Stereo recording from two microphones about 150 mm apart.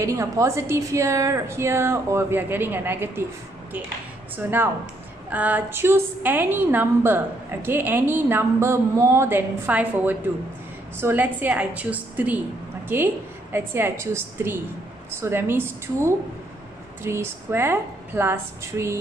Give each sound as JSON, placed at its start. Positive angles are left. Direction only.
{"t": 0.0, "sound": "a woman's voice", "side_deg": -20}
{"t": 4.4, "sound": "a woman's voice", "side_deg": -15}